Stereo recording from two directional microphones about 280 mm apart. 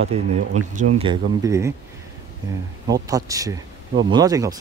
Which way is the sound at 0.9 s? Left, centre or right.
Centre.